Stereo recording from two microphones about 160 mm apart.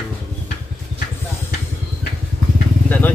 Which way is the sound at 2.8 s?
10° left (ahead or behind).